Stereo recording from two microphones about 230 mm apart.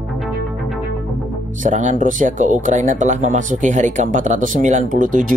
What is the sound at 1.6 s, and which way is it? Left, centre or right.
Speech, right.